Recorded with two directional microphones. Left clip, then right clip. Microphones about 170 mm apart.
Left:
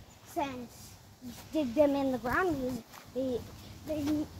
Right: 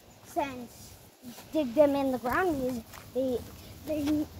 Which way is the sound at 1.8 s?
35° right (ahead or behind).